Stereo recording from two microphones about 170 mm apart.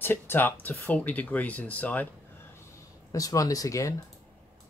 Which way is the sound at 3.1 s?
20° left (ahead or behind).